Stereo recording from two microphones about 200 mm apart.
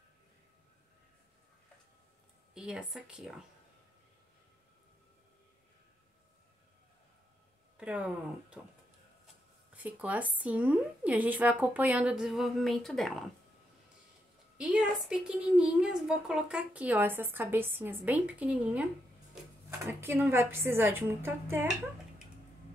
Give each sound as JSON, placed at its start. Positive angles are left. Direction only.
{"t": 2.5, "sound": "a woman's voice", "side_deg": -5}
{"t": 7.7, "sound": "speech", "side_deg": -5}
{"t": 9.8, "sound": "a woman's voice", "side_deg": -5}
{"t": 14.6, "sound": "a woman's voice", "side_deg": -5}
{"t": 19.9, "sound": "a woman's voice", "side_deg": -10}